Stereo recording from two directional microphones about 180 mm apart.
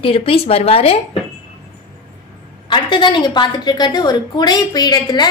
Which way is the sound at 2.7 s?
25° left (ahead or behind).